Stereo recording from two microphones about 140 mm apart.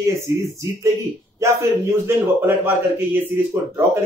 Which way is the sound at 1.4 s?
20° right (ahead or behind).